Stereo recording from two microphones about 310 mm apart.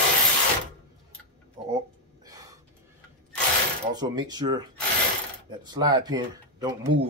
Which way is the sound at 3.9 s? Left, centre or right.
Centre.